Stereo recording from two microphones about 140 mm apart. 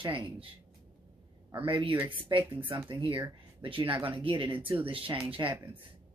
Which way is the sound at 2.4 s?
15° right (ahead or behind).